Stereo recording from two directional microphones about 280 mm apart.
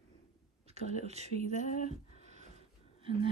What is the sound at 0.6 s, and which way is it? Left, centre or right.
Speech, right.